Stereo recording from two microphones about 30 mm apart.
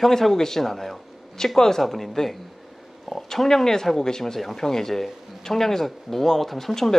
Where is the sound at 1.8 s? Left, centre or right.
Centre.